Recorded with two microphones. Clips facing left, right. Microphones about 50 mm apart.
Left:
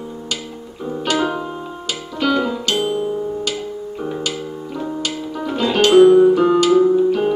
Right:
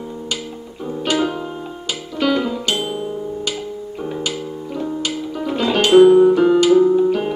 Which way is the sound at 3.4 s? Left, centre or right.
Centre.